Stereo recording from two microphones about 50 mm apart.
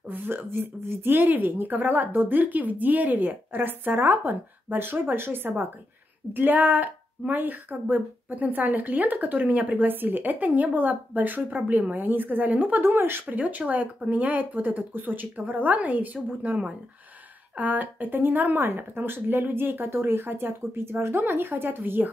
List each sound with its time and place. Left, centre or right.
0.1 s a woman's voice: right
6.3 s a woman's voice: right
13.4 s a woman's voice: right